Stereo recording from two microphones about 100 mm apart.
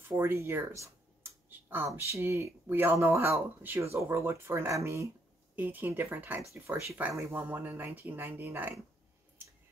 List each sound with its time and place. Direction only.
0.1 s speech: 25° right (ahead or behind)
1.5 s a sound: 20° right (ahead or behind)
1.9 s speech: 30° right (ahead or behind)
5.6 s speech: 20° right (ahead or behind)